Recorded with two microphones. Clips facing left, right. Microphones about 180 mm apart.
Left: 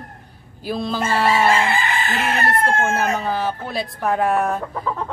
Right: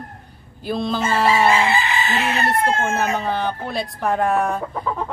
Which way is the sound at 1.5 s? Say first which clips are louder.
Right 1 dB; 55° left (ahead or behind).